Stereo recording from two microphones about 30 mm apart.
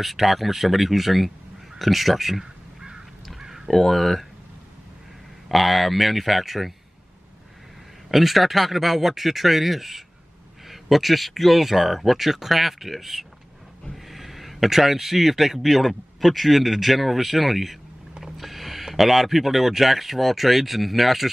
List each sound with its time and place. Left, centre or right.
0.0 s speech: centre
3.3 s a sound: centre
3.7 s speech: centre
5.5 s speech: centre
8.1 s speech: centre
18.2 s music: centre
18.9 s speech: centre